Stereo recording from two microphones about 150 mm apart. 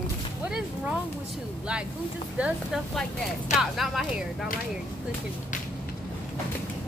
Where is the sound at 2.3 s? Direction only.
10° right (ahead or behind).